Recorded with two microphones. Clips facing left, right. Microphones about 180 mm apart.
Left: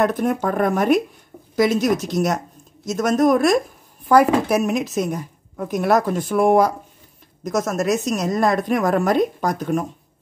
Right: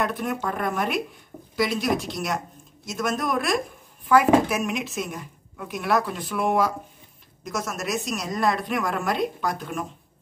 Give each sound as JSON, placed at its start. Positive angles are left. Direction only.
{"t": 0.0, "sound": "a woman's voice", "side_deg": 45}